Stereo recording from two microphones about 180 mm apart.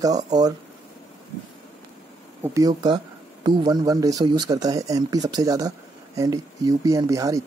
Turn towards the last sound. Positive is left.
turn(degrees=-20)  # may be behind; listen again after turning